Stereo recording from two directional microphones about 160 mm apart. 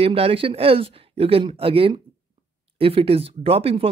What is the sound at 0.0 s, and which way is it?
Speech, 35° right (ahead or behind).